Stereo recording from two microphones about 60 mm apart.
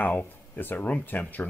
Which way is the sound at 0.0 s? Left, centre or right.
Left.